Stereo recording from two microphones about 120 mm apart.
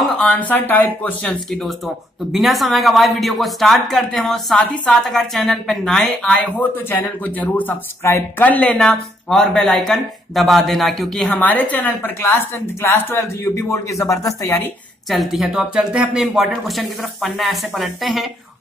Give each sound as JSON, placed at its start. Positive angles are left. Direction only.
{"t": 0.2, "sound": "speech", "side_deg": 10}
{"t": 1.5, "sound": "speech", "side_deg": 0}
{"t": 6.9, "sound": "speech", "side_deg": 15}
{"t": 11.2, "sound": "a woman's voice", "side_deg": 15}
{"t": 15.0, "sound": "speech", "side_deg": 0}